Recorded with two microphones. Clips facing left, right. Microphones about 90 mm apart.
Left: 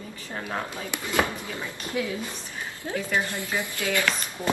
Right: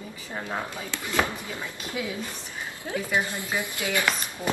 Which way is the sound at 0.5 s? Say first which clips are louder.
Left 1 dB; 15° right (ahead or behind).